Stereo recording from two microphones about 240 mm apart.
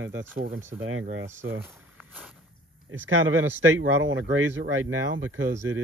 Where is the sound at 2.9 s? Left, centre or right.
Right.